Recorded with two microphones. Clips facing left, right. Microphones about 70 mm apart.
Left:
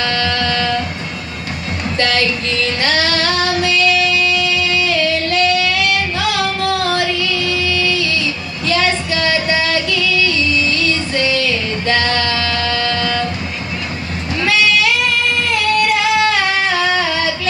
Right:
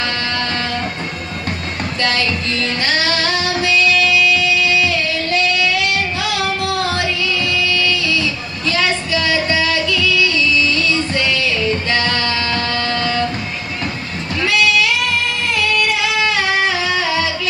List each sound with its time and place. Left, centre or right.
0.4 s music: right
2.0 s music: left
8.0 s a sound: left
11.3 s music: left
12.4 s music: right
14.4 s singing: left